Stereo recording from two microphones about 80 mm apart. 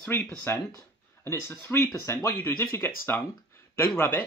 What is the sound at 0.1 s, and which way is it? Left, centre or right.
Speech, left.